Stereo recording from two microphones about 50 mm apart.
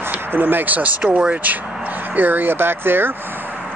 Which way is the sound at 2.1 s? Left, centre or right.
Right.